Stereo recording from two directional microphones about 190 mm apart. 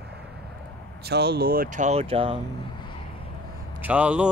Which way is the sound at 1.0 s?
60° right (ahead or behind).